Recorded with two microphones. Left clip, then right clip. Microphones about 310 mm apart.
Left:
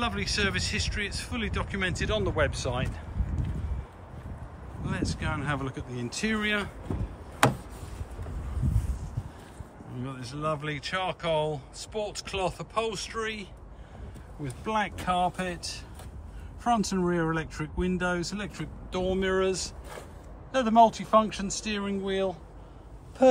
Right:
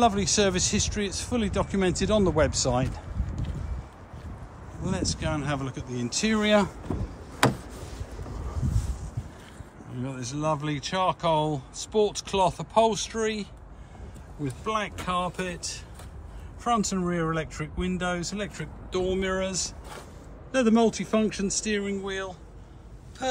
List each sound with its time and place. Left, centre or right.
0.0 s speech: centre
4.8 s speech: centre
7.4 s tick-tock: centre
9.9 s speech: centre
14.7 s speech: centre
21.1 s speech: left
21.5 s speech: centre